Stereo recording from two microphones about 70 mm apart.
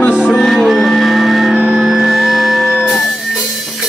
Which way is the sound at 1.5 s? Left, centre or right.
Right.